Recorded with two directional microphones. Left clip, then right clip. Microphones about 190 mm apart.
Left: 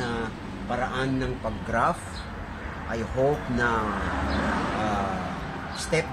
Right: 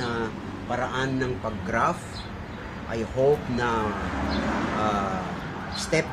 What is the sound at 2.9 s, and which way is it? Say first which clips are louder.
Speech: right 3 dB; 15° right (ahead or behind).